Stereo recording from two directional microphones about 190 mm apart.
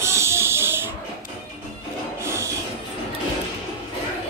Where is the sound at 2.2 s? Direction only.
15° right (ahead or behind).